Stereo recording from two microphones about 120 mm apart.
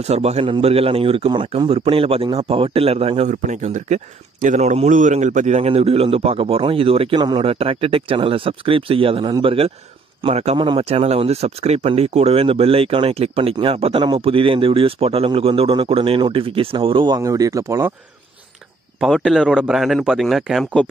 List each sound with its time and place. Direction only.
0.0 s speech: 60° right (ahead or behind)
3.3 s speech: 90° right; by 7.2 s 50° right (ahead or behind)
7.2 s speech: 35° right (ahead or behind)
7.4 s speech: 55° right (ahead or behind)
10.2 s speech: 60° right (ahead or behind); by 17.2 s 40° right (ahead or behind)
17.2 s speech: 30° right (ahead or behind)
18.9 s a man's voice: centre (ahead or behind)